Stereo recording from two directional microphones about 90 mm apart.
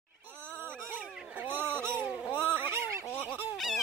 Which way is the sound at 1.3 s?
20° right (ahead or behind).